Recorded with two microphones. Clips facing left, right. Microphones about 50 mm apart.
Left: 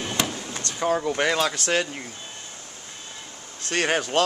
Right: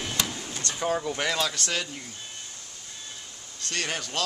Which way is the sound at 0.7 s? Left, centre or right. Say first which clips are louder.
Left 5 dB; centre.